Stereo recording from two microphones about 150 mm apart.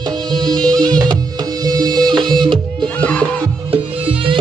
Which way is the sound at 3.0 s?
5° left (ahead or behind).